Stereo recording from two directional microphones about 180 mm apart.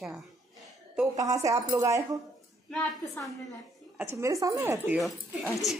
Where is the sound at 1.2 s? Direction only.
20° right (ahead or behind).